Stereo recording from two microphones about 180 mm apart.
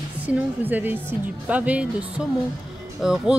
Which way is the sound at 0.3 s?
10° right (ahead or behind).